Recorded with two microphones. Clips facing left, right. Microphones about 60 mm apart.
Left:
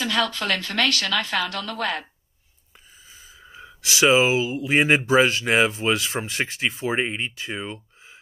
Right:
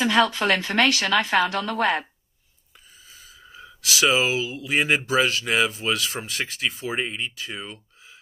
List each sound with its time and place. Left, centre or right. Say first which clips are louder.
0.0 s speech: right 4 dB; right
3.1 s speech: left 1 dB; left